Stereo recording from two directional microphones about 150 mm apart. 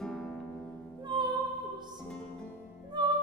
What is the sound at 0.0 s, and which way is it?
Harp, centre (ahead or behind).